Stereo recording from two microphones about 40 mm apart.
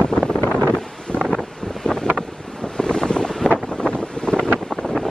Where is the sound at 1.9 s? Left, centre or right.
Left.